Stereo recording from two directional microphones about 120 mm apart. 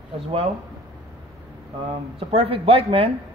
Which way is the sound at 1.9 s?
55° right (ahead or behind).